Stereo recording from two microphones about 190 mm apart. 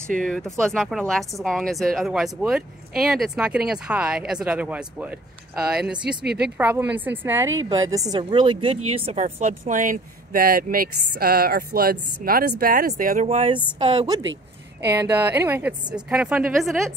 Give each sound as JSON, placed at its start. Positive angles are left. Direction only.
{"t": 0.2, "sound": "a woman's voice", "side_deg": 5}
{"t": 13.3, "sound": "speech", "side_deg": -30}
{"t": 14.2, "sound": "a sound", "side_deg": -75}
{"t": 14.9, "sound": "a woman's voice", "side_deg": -10}